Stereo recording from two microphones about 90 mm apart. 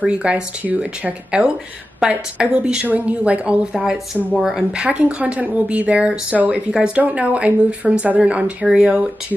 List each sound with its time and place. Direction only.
0.0 s speech: 15° right (ahead or behind)